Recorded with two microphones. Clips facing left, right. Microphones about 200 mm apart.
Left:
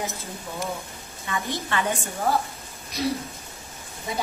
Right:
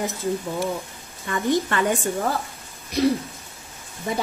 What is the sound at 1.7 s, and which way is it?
Speech, 45° right (ahead or behind).